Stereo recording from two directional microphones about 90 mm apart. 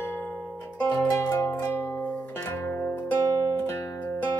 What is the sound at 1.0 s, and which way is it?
Zither, 30° left (ahead or behind).